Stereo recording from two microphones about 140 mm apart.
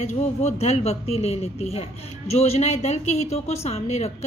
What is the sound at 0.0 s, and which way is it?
A man's voice, 50° left (ahead or behind).